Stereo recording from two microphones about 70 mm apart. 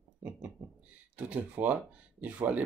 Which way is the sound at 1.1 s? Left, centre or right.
Right.